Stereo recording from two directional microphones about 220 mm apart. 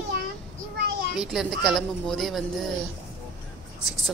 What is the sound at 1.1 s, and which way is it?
Speech, centre (ahead or behind).